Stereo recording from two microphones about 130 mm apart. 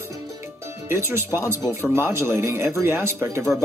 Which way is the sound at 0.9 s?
20° right (ahead or behind).